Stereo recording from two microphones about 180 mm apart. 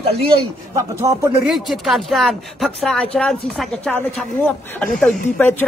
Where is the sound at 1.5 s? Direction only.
Centre (ahead or behind).